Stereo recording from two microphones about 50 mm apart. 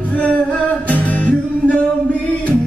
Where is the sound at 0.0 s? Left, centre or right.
Left.